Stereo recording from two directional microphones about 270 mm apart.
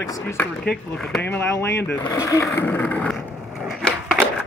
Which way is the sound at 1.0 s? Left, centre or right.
Centre.